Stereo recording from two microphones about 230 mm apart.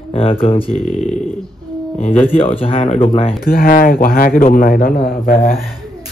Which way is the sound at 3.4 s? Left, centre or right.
Left.